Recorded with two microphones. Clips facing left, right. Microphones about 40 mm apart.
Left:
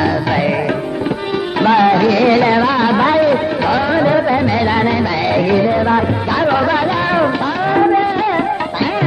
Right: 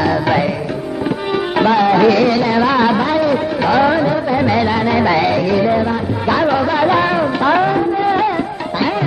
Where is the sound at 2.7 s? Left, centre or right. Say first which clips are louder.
Right 1 dB; centre.